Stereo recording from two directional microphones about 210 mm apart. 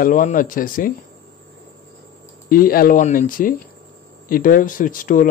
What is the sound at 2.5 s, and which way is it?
Speech, 45° left (ahead or behind).